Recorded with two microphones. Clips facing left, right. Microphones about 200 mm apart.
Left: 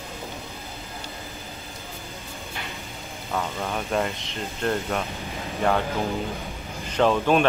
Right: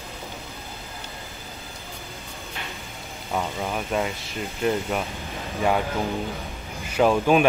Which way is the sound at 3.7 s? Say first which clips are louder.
Left 1 dB; centre (ahead or behind).